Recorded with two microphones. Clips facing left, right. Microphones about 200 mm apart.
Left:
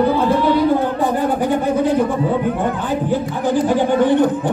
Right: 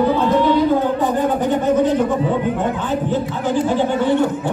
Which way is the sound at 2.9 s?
10° left (ahead or behind).